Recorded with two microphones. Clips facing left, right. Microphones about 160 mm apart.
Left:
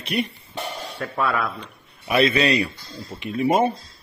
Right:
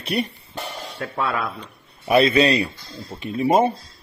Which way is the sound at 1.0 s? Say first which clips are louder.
Left 1 dB; 25° right (ahead or behind).